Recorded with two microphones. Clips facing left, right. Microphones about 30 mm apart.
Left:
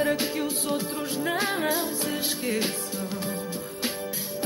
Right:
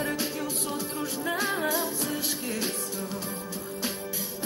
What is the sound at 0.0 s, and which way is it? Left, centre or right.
Music, left.